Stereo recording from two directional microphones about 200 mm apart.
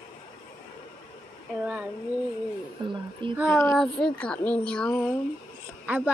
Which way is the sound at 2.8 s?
25° right (ahead or behind).